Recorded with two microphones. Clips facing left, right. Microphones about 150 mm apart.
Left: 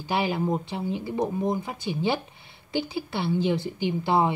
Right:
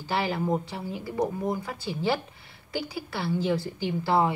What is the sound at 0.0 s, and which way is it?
A woman's voice, 15° left (ahead or behind).